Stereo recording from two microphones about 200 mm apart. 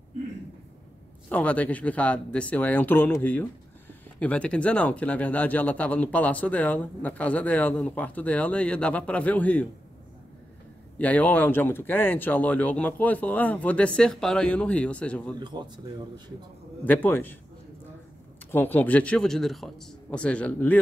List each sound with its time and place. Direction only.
1.3 s speech: 5° left (ahead or behind)
11.0 s speech: 5° left (ahead or behind)
15.3 s speech: 20° right (ahead or behind)
16.8 s speech: 10° left (ahead or behind)
18.5 s a man's voice: 10° left (ahead or behind)